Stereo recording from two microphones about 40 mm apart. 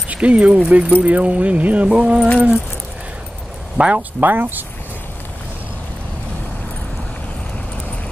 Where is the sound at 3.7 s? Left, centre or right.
Right.